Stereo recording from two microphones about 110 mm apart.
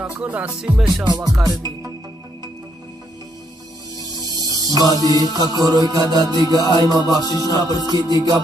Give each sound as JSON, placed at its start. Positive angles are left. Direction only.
{"t": 0.2, "sound": "music", "side_deg": -10}
{"t": 1.0, "sound": "music", "side_deg": -40}
{"t": 4.1, "sound": "music", "side_deg": -35}